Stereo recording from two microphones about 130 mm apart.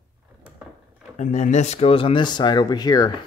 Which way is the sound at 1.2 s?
65° left (ahead or behind).